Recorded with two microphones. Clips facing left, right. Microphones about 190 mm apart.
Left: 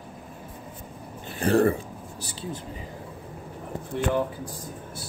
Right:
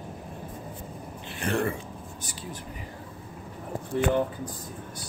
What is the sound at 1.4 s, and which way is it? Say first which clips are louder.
Speech: left 7 dB; 35° left (ahead or behind).